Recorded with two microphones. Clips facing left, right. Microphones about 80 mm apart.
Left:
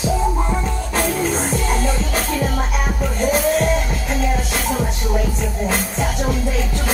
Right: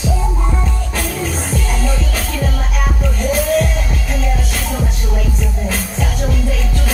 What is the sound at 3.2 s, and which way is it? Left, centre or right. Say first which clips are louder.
Music: right 2 dB; left.